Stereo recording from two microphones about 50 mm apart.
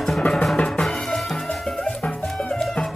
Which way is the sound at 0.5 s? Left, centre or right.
Left.